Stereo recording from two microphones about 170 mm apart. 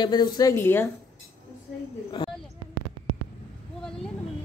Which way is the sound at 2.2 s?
30° left (ahead or behind).